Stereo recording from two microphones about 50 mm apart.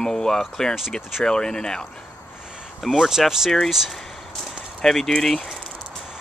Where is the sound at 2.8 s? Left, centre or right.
Centre.